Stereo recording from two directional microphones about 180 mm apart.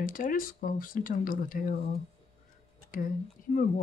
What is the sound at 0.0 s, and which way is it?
Speech, 50° left (ahead or behind).